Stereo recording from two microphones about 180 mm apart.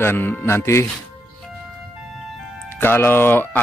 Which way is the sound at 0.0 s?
10° left (ahead or behind).